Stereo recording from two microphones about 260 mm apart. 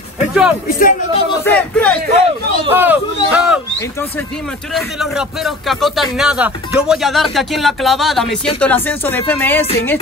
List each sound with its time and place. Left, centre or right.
0.3 s music: centre
0.7 s speech: left
1.4 s speech: centre
2.7 s a sound: centre
4.7 s speech: centre